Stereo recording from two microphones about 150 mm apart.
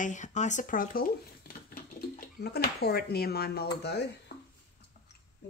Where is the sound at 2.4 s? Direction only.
90° left.